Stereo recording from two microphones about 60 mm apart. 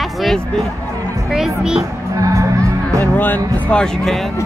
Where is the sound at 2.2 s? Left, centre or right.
Right.